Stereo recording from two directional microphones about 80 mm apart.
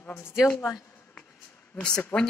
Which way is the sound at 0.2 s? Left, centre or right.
Left.